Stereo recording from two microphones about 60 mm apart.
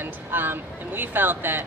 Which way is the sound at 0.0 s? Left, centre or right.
Right.